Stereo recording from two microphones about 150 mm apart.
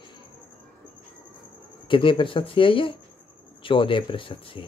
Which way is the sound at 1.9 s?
35° left (ahead or behind).